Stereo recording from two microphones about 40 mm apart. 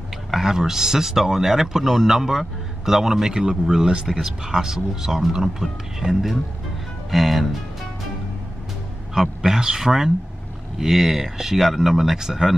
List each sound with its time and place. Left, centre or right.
0.3 s a sound: centre
0.6 s speech: centre
9.1 s speech: centre